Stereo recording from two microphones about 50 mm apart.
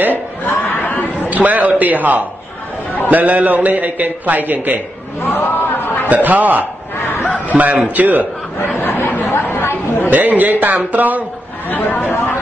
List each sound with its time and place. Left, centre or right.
0.1 s chuckle: left
1.3 s a man's voice: right
5.2 s a man's voice: left
6.0 s a man's voice: right
6.6 s a sound: left
7.4 s a man's voice: right
8.7 s chatter: left
10.0 s a man's voice: right
11.7 s speech: left